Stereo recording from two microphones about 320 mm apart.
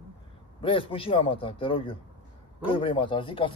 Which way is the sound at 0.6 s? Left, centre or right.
Centre.